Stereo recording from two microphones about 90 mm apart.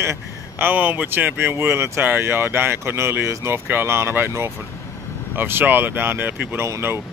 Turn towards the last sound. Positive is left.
turn(degrees=-30)  # may be behind; listen again after turning